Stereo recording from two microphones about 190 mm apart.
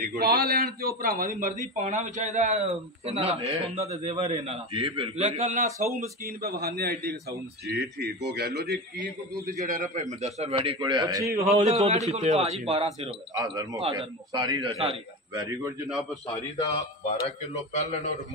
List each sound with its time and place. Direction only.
0.0 s a man's voice: 50° right (ahead or behind)
5.9 s a man's voice: 55° right (ahead or behind)
9.3 s a man's voice: 15° right (ahead or behind)
9.7 s a man's voice: 45° right (ahead or behind)
10.8 s a man's voice: 20° right (ahead or behind)
11.6 s a man's voice: 35° right (ahead or behind)
16.3 s a man's voice: 20° left (ahead or behind)
16.7 s speech: 35° left (ahead or behind)